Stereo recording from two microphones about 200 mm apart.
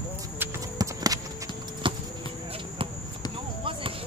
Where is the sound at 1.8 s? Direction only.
25° right (ahead or behind).